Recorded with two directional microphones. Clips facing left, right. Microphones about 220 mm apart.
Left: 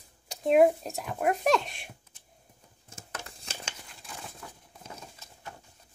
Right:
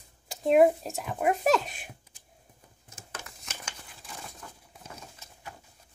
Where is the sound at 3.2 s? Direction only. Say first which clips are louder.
Left 1 dB; 30° left (ahead or behind).